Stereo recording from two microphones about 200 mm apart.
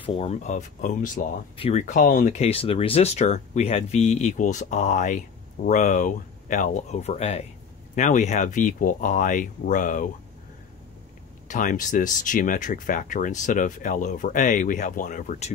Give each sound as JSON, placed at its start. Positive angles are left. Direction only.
{"t": 0.0, "sound": "speech", "side_deg": 30}
{"t": 11.4, "sound": "speech", "side_deg": 40}